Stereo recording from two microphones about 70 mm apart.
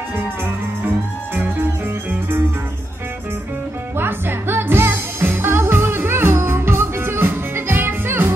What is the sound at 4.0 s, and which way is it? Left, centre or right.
Music, right.